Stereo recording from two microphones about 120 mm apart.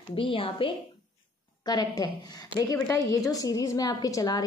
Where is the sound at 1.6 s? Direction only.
35° left (ahead or behind).